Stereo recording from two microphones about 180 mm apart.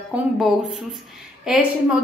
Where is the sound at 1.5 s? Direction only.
5° right (ahead or behind).